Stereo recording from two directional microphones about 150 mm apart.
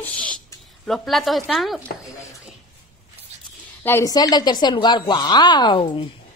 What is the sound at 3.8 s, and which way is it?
A woman's voice, 20° left (ahead or behind).